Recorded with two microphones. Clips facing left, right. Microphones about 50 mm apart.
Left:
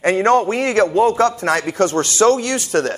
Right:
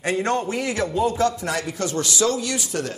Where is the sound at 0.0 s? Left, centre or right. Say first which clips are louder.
Left 8 dB; left.